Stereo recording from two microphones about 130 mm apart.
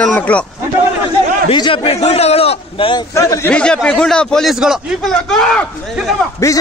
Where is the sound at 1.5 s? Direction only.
40° left (ahead or behind).